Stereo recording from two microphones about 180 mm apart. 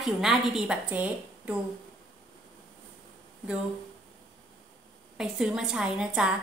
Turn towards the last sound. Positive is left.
turn(degrees=-5)  # may be behind; listen again after turning